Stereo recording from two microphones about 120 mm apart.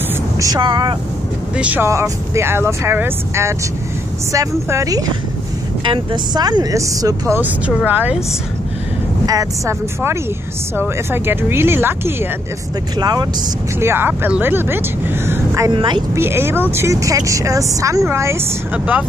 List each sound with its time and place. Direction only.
0.6 s speech: 40° right (ahead or behind)
1.6 s speech: 10° right (ahead or behind)
1.9 s speech: 25° right (ahead or behind)
7.3 s speech: 15° right (ahead or behind)
9.2 s speech: 30° right (ahead or behind)
13.0 s speech: 35° right (ahead or behind)
13.7 s speech: 20° right (ahead or behind)
15.2 s vehicle: 25° right (ahead or behind)
15.7 s speech: 40° right (ahead or behind)
16.2 s speech: 20° right (ahead or behind)